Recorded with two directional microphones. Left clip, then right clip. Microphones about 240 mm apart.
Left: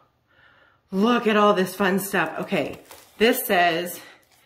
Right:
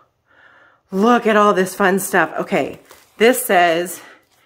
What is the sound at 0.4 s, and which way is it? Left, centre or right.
Speech, centre.